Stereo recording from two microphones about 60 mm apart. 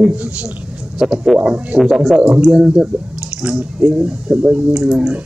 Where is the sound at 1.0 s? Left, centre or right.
Centre.